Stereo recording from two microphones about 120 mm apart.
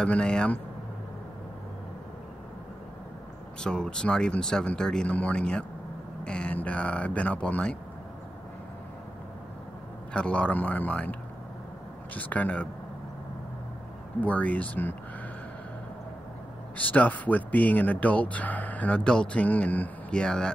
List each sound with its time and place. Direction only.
0.0 s speech: 5° left (ahead or behind)
3.6 s speech: 5° left (ahead or behind)
10.1 s speech: 10° left (ahead or behind)
12.2 s speech: 15° left (ahead or behind)
14.2 s speech: 10° left (ahead or behind)
16.7 s speech: 10° left (ahead or behind)